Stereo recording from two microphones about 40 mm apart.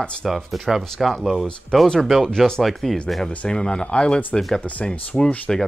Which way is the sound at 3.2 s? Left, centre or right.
Left.